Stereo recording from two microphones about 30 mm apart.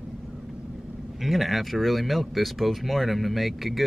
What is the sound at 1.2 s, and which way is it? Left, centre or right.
Speech, centre.